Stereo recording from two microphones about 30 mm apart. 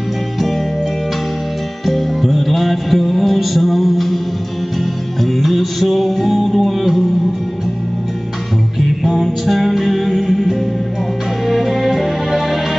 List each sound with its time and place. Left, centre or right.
1.9 s music: centre
5.2 s music: centre
9.0 s music: centre